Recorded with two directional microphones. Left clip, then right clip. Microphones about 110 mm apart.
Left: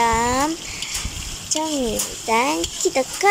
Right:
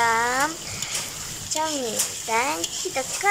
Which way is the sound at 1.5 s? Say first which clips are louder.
Left 3 dB; 25° left (ahead or behind).